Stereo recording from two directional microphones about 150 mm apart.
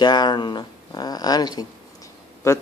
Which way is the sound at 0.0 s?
30° left (ahead or behind).